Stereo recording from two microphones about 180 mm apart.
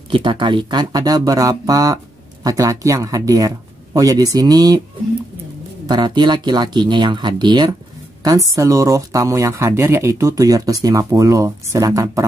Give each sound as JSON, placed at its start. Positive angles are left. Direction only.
{"t": 0.1, "sound": "speech", "side_deg": -25}
{"t": 5.9, "sound": "speech", "side_deg": -25}